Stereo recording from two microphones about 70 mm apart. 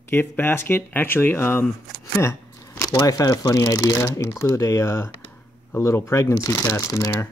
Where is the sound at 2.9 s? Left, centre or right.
Left.